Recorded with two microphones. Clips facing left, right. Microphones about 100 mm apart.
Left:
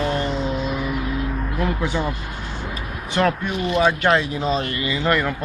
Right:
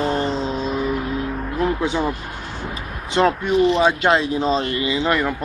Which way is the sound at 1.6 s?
10° right (ahead or behind).